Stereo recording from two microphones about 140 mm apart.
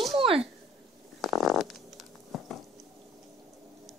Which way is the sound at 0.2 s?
40° right (ahead or behind).